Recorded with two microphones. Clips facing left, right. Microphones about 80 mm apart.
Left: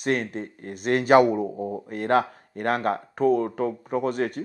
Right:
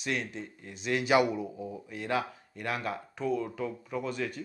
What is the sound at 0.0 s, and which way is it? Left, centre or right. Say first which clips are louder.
Speech: left 8 dB; left.